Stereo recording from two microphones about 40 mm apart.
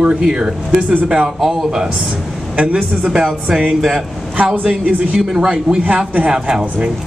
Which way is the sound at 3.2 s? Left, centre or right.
Centre.